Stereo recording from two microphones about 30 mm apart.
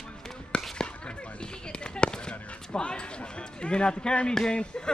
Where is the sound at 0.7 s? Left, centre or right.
Left.